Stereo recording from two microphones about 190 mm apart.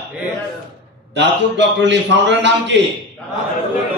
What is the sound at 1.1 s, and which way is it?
A man's voice, 70° right (ahead or behind).